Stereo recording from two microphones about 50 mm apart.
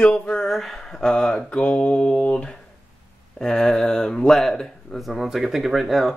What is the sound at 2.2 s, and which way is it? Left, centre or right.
Speech, left.